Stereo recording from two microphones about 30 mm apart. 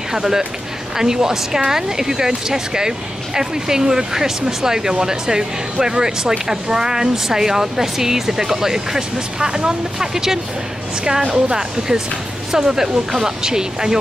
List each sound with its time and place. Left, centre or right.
0.1 s speech: centre
9.5 s speech: right
9.9 s speech: centre
11.2 s speech: right